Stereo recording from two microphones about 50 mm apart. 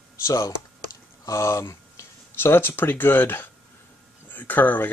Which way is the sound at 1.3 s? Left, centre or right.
Left.